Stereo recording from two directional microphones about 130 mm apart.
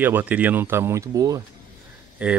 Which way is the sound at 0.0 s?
15° right (ahead or behind).